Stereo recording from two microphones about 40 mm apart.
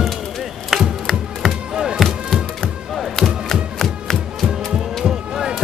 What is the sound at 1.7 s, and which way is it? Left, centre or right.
Music, centre.